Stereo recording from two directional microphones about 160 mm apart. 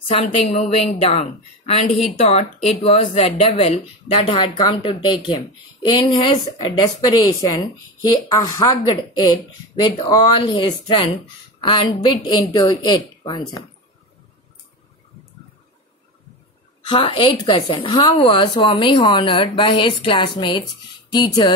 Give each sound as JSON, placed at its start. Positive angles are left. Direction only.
{"t": 0.1, "sound": "a woman's voice", "side_deg": 40}
{"t": 16.8, "sound": "a woman's voice", "side_deg": 35}